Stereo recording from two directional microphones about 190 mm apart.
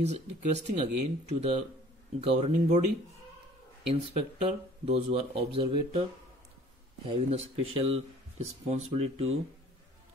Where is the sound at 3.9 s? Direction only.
30° right (ahead or behind).